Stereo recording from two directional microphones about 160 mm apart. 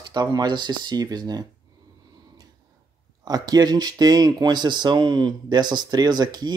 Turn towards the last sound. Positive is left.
turn(degrees=-25)  # may be behind; listen again after turning